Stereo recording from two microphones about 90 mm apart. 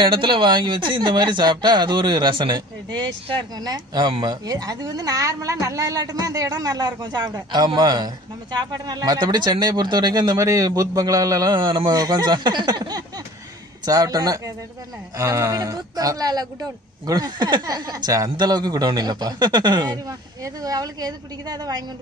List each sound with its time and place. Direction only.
0.0 s a woman's voice: 65° right (ahead or behind)
10.3 s a man's voice: 35° right (ahead or behind)
11.5 s a woman's voice: 55° right (ahead or behind)
20.1 s a woman's voice: 40° right (ahead or behind)